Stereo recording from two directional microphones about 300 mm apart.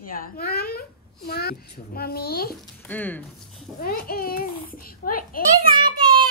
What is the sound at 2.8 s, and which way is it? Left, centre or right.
Speech, centre.